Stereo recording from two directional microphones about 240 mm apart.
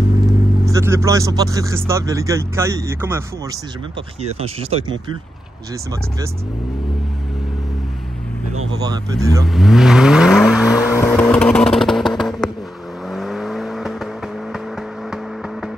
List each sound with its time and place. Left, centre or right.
0.7 s speech: centre
4.2 s speech: right
8.8 s speech: centre
9.4 s speech: centre
11.0 s vehicle: centre